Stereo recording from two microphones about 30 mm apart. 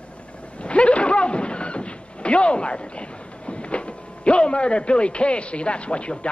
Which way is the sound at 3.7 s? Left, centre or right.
Left.